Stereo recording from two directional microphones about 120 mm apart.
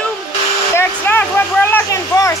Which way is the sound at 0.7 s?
20° left (ahead or behind).